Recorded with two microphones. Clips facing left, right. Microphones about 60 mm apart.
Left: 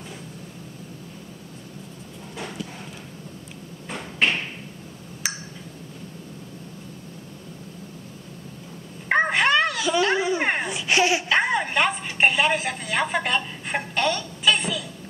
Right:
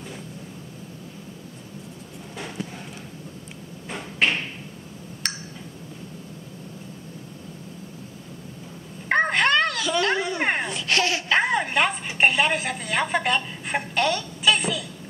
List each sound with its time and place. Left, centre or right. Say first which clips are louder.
5.2 s tick: left 1 dB; centre
9.1 s dog: even; centre
10.7 s a sound: left 3 dB; centre
11.2 s chopping: even; centre